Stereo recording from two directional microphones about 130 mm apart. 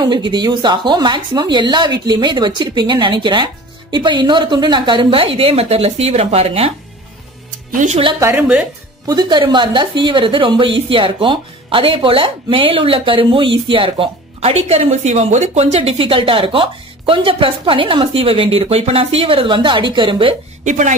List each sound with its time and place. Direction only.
0.0 s speech: 35° right (ahead or behind)
7.7 s speech: 75° right (ahead or behind)
8.2 s a woman's voice: 15° right (ahead or behind)
9.0 s speech: 35° right (ahead or behind)
20.6 s speech: 70° right (ahead or behind)